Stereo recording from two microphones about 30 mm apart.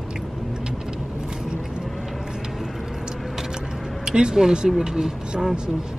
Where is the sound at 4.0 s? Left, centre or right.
Right.